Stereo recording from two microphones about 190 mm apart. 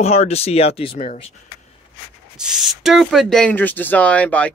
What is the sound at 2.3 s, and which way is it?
Speech, 5° right (ahead or behind).